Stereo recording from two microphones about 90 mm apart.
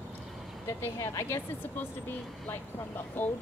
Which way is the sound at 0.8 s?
30° left (ahead or behind).